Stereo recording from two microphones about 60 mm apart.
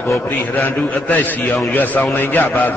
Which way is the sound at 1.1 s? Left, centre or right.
Left.